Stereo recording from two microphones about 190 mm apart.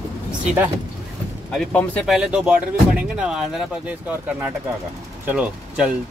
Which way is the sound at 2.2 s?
5° right (ahead or behind).